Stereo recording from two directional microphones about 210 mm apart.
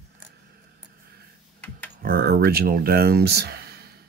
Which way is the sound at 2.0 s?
45° right (ahead or behind).